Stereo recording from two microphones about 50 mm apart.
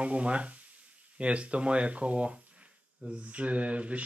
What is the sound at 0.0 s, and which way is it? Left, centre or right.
Speech, right.